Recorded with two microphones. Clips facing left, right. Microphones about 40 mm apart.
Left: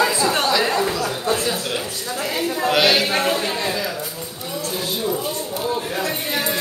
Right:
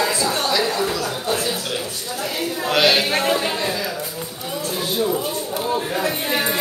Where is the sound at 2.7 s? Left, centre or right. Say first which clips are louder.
Right 1 dB; centre.